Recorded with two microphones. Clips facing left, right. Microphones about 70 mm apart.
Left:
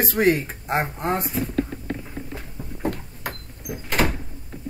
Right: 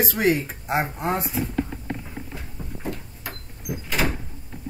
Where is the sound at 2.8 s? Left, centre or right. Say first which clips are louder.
Left 6 dB; left.